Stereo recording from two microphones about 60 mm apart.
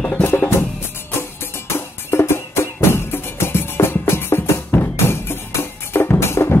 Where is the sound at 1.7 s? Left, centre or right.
Left.